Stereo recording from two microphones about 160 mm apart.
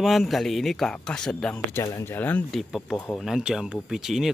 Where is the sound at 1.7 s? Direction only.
15° left (ahead or behind).